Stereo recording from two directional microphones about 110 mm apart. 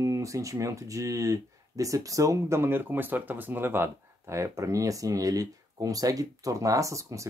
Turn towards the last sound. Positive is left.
turn(degrees=-30)  # may be behind; listen again after turning